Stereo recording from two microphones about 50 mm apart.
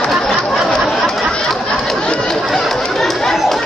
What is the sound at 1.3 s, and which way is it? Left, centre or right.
Chatter, centre.